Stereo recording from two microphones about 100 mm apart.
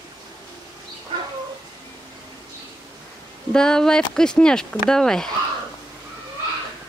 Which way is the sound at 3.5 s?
5° left (ahead or behind).